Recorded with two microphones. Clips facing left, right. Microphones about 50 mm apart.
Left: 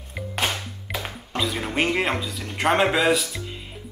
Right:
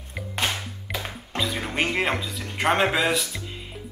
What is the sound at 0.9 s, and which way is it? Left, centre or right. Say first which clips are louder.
A man's voice: left 1 dB; centre.